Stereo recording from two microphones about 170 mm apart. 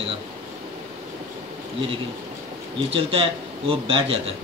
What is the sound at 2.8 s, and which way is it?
A man's voice, 30° right (ahead or behind).